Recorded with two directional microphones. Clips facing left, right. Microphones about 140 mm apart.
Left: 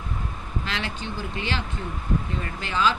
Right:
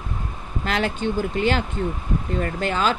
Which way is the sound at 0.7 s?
45° right (ahead or behind).